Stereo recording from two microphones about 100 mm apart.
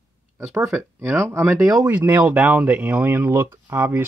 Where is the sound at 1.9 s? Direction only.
15° right (ahead or behind).